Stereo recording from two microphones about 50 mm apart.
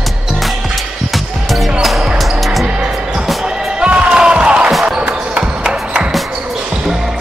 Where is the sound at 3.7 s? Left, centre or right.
Right.